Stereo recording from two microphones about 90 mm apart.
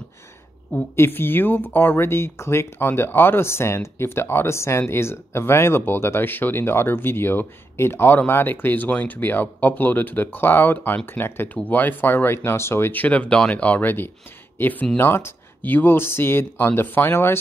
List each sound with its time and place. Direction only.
0.7 s speech: 25° left (ahead or behind)